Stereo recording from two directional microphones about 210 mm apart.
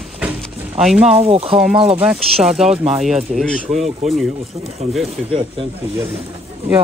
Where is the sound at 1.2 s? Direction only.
30° right (ahead or behind).